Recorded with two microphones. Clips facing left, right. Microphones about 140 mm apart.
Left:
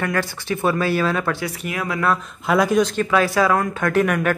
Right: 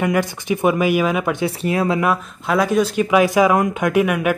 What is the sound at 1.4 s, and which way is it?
Speech, 30° right (ahead or behind).